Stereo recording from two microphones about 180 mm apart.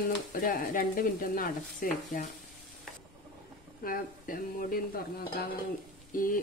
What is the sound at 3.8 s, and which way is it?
Stir, 50° left (ahead or behind).